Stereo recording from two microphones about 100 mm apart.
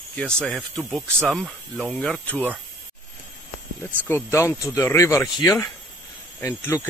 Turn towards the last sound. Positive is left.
turn(degrees=20)  # may be behind; listen again after turning